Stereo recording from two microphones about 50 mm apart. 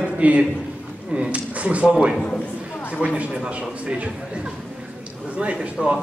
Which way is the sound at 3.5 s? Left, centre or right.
Right.